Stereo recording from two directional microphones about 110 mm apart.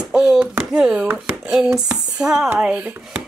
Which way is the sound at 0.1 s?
5° right (ahead or behind).